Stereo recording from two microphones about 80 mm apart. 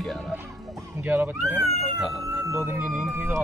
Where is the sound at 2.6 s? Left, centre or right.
Centre.